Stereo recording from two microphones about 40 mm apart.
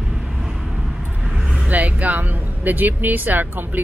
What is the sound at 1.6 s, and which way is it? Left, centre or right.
Speech, right.